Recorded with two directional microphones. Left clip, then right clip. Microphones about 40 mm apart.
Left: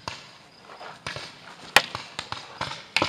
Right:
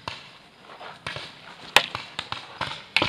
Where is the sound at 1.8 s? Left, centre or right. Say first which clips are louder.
Even; left.